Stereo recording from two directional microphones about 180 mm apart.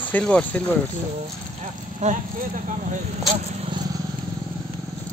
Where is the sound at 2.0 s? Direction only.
40° right (ahead or behind).